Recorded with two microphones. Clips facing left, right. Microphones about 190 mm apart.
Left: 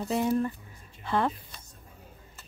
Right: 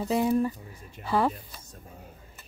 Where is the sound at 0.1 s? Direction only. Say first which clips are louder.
Right 2 dB; 5° right (ahead or behind).